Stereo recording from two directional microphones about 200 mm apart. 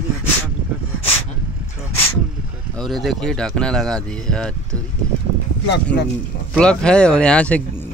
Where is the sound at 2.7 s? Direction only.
Centre (ahead or behind).